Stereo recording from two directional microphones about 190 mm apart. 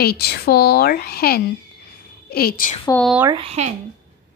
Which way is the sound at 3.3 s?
35° right (ahead or behind).